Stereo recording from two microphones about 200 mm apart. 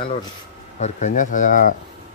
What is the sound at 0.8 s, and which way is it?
Speech, 40° left (ahead or behind).